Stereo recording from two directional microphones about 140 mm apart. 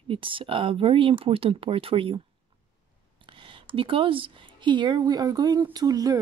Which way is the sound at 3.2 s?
35° right (ahead or behind).